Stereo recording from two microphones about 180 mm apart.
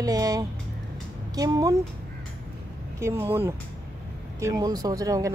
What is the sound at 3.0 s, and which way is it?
Speech, 15° right (ahead or behind).